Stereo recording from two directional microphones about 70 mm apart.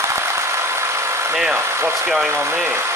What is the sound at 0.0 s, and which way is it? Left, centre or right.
Engine, right.